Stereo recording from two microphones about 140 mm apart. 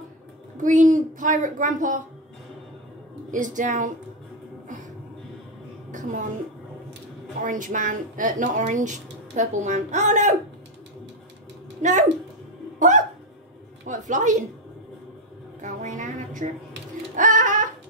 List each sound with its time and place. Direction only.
0.6 s speech: 65° right (ahead or behind)
3.3 s speech: 65° right (ahead or behind)
5.9 s a woman's voice: 60° right (ahead or behind)
7.4 s speech: 70° right (ahead or behind)
11.8 s speech: 60° right (ahead or behind)
12.7 s hiccup: 65° right (ahead or behind)
13.8 s speech: 60° right (ahead or behind)
15.6 s a sound: 65° right (ahead or behind)